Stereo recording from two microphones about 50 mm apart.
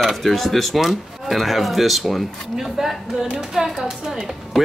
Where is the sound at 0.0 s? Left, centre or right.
Centre.